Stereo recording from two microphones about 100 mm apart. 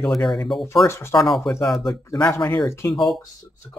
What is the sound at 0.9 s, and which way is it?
Speech, 25° left (ahead or behind).